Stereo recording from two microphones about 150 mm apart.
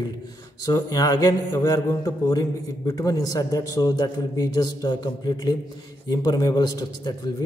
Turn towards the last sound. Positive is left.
turn(degrees=25)  # may be behind; listen again after turning